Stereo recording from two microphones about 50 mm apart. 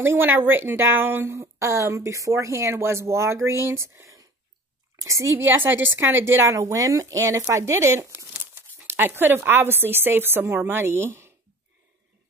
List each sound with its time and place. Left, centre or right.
0.0 s a woman's voice: right
1.3 s a woman's voice: right
5.4 s a woman's voice: right
7.5 s speech: right
8.4 s a woman's voice: right